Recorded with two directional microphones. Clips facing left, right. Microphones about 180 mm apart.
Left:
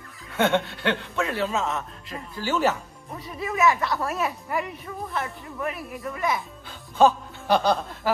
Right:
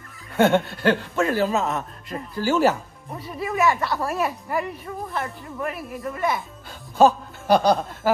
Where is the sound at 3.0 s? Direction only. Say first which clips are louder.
Right 2 dB; centre (ahead or behind).